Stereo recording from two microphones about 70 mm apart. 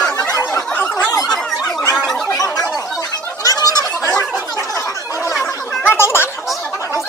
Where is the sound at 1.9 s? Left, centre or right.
Centre.